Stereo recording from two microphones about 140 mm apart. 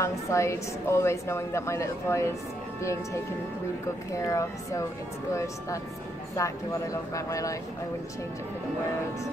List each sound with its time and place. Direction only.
0.0 s a woman's voice: 20° left (ahead or behind)
6.3 s a woman's voice: 25° left (ahead or behind)